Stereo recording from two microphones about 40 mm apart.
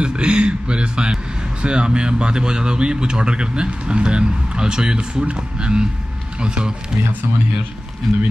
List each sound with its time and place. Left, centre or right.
0.0 s a man's voice: right